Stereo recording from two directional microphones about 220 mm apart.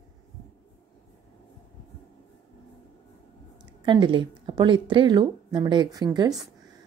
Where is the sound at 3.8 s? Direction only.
20° right (ahead or behind).